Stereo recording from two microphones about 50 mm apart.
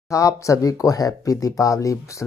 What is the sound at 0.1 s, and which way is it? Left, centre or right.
Speech, left.